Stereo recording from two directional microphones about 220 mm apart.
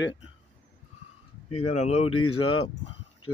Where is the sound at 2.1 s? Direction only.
80° left.